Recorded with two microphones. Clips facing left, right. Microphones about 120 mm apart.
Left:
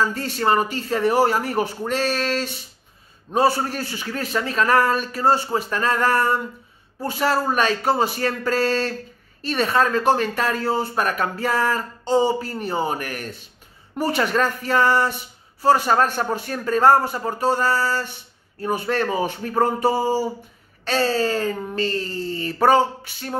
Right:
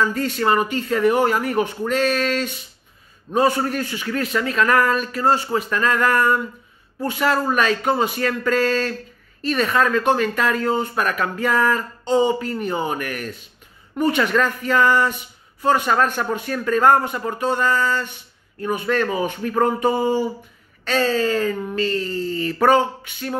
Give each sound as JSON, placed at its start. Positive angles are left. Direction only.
{"t": 0.0, "sound": "speech", "side_deg": 30}